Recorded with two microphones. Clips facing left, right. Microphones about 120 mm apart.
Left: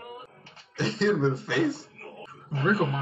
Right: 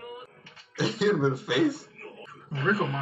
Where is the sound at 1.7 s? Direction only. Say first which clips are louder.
Right 1 dB; 25° left (ahead or behind).